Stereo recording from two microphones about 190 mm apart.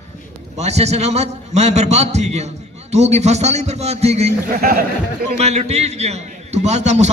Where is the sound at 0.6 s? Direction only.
35° right (ahead or behind).